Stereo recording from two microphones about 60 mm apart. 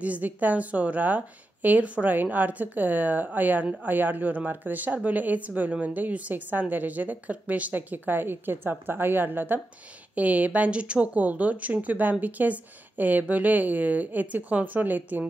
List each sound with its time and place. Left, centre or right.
0.0 s speech: right